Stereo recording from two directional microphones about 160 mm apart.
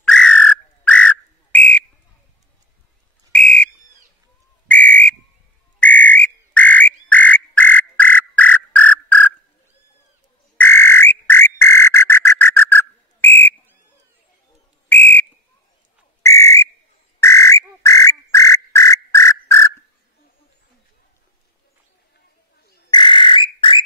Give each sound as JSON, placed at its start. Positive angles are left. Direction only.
{"t": 0.0, "sound": "whistle", "side_deg": 5}
{"t": 3.3, "sound": "whistle", "side_deg": 5}
{"t": 4.6, "sound": "whistle", "side_deg": 10}
{"t": 5.8, "sound": "frog", "side_deg": 10}
{"t": 10.6, "sound": "frog", "side_deg": 15}
{"t": 14.9, "sound": "whistle", "side_deg": 10}
{"t": 17.2, "sound": "music", "side_deg": 20}
{"t": 22.8, "sound": "bird", "side_deg": 30}